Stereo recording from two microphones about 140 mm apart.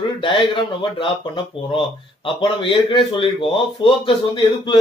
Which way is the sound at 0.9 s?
35° left (ahead or behind).